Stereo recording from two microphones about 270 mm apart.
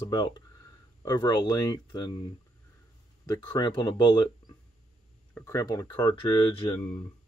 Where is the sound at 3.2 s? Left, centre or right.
Centre.